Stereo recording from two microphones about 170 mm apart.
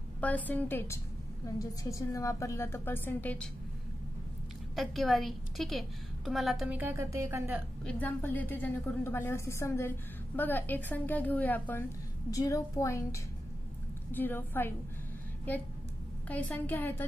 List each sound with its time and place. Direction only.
0.2 s a woman's voice: 10° left (ahead or behind)
4.7 s a woman's voice: centre (ahead or behind)
7.8 s a woman's voice: 10° left (ahead or behind)
16.3 s a woman's voice: 10° left (ahead or behind)